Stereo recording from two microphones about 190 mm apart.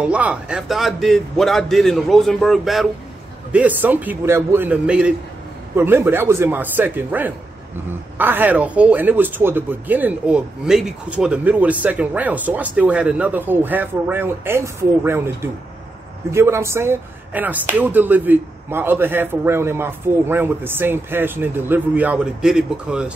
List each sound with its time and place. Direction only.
0.0 s a man's voice: 5° right (ahead or behind)